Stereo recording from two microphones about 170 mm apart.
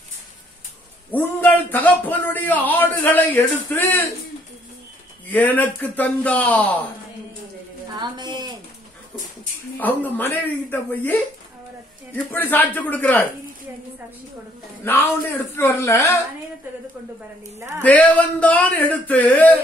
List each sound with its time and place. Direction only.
1.1 s speech: 10° left (ahead or behind)
5.3 s speech: 10° left (ahead or behind)
8.0 s a sound: 25° right (ahead or behind)
9.8 s speech: 10° left (ahead or behind)
12.3 s speech: 10° left (ahead or behind)
14.9 s speech: 10° left (ahead or behind)
17.8 s speech: 10° left (ahead or behind)